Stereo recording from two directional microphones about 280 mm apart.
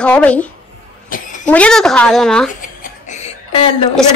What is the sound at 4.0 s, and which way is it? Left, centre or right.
Speech, centre.